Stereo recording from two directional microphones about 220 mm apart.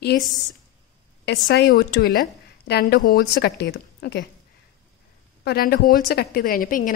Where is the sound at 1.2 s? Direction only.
50° left (ahead or behind).